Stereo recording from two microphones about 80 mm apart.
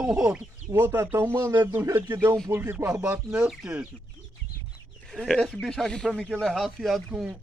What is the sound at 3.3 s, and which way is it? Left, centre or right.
Speech, centre.